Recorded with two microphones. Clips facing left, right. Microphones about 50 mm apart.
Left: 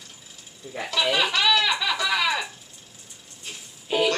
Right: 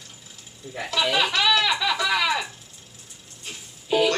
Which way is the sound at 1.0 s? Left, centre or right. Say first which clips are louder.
Even; centre.